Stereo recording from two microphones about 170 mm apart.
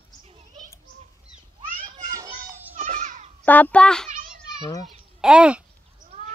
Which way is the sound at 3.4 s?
10° left (ahead or behind).